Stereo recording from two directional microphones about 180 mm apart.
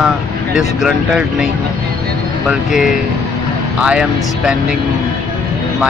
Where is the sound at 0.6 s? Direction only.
Centre (ahead or behind).